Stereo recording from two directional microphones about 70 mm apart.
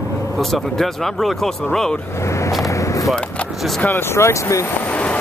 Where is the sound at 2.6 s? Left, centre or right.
Left.